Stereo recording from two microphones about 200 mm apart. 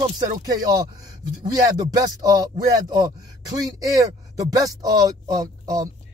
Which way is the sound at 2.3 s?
20° right (ahead or behind).